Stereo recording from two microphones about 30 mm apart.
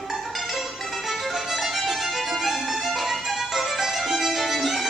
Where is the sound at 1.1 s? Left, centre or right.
Centre.